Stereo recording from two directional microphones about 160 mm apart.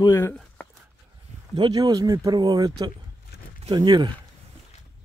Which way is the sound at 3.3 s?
90° left.